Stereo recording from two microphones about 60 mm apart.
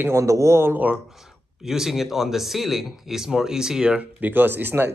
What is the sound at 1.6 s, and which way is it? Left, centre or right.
Speech, centre.